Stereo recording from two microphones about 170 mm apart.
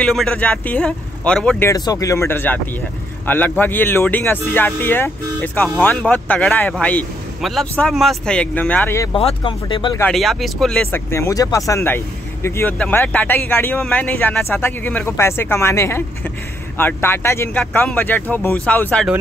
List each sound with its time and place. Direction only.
0.0 s speech: 5° left (ahead or behind)
1.7 s speech: 20° left (ahead or behind)
9.1 s speech: 30° left (ahead or behind)
10.1 s speech: centre (ahead or behind)